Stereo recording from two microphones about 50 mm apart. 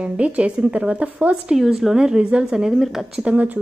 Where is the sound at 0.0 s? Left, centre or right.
Right.